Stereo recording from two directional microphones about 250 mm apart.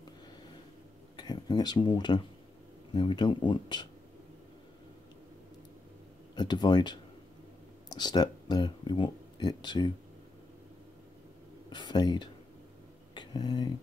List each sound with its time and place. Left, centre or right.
1.1 s speech: centre
6.3 s speech: centre
11.7 s speech: centre
13.1 s a sound: centre